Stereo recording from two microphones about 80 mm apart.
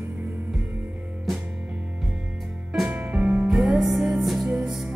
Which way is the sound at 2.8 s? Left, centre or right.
Centre.